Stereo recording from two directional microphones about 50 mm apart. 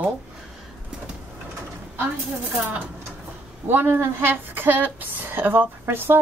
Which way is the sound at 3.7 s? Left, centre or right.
Right.